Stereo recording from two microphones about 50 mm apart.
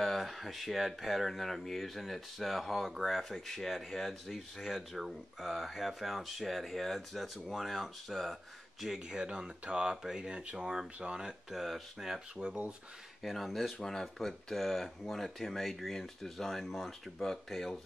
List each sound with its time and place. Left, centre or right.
0.0 s speech: centre
8.8 s speech: centre
12.4 s speech: right
13.2 s speech: centre